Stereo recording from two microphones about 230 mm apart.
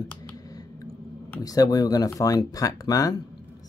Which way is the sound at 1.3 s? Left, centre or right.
Centre.